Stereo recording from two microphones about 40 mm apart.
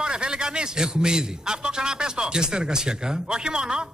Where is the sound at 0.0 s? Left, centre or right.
Right.